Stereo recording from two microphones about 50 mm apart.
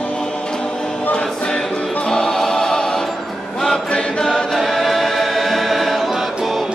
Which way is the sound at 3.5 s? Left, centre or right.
Centre.